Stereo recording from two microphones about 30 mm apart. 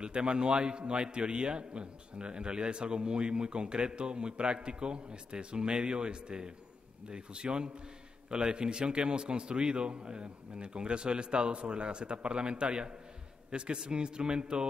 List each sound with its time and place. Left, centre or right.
0.0 s a man's voice: right